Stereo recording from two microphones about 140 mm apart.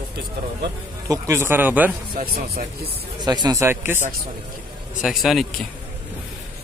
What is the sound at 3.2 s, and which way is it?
Speech, 30° right (ahead or behind).